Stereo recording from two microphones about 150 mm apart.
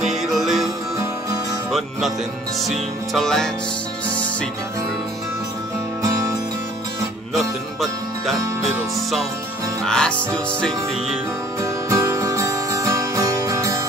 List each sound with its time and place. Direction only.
0.0 s music: centre (ahead or behind)
1.7 s music: centre (ahead or behind)
7.3 s music: centre (ahead or behind)
9.8 s music: 5° left (ahead or behind)
11.6 s music: 20° right (ahead or behind)